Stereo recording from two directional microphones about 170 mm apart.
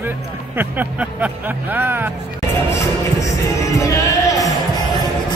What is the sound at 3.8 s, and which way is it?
Music, 20° left (ahead or behind).